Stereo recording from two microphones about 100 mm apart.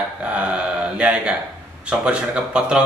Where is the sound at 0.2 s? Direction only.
10° right (ahead or behind).